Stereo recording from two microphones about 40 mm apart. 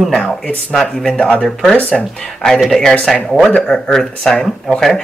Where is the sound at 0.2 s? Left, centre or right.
Left.